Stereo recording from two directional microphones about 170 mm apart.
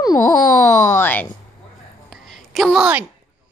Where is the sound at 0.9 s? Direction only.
10° left (ahead or behind).